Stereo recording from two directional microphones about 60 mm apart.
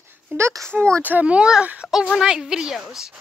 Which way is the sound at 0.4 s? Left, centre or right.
Right.